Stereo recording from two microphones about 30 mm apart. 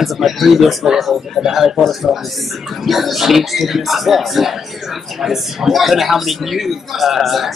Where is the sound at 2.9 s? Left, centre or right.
Centre.